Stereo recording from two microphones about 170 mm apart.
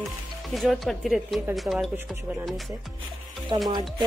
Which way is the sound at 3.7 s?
25° right (ahead or behind).